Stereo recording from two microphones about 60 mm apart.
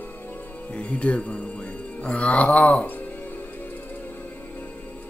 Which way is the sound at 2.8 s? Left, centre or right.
Left.